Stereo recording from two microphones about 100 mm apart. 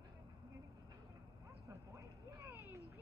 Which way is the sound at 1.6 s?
30° right (ahead or behind).